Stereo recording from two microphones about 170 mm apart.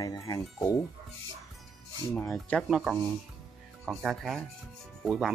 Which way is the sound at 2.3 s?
Centre (ahead or behind).